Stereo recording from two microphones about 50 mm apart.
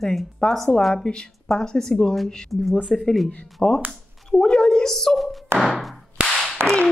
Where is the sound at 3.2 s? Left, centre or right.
Centre.